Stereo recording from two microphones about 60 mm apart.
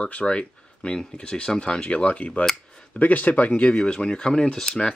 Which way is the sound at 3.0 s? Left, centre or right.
Left.